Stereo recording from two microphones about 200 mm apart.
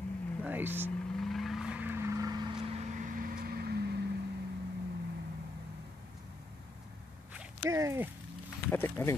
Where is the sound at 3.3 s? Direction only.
50° right (ahead or behind).